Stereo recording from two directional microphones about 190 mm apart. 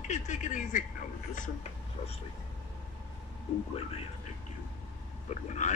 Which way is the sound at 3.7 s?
30° left (ahead or behind).